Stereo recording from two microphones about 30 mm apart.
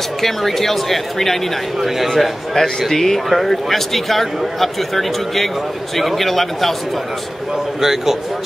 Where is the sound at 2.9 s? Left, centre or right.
Centre.